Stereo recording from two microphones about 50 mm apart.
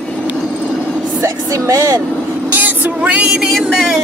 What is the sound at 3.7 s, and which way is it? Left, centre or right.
Speech, centre.